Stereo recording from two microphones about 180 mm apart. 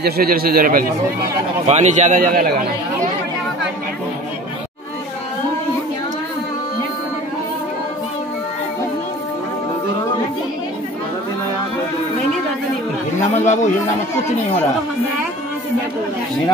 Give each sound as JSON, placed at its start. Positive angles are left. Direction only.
{"t": 0.0, "sound": "a man's voice", "side_deg": -55}
{"t": 1.7, "sound": "a man's voice", "side_deg": -40}
{"t": 13.3, "sound": "speech", "side_deg": 40}